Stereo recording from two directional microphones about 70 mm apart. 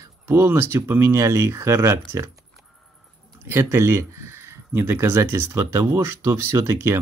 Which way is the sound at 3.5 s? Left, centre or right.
Right.